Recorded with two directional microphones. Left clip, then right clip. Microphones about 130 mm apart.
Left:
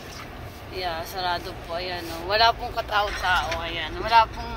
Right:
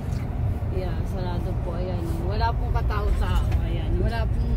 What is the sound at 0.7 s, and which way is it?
Speech, 25° left (ahead or behind).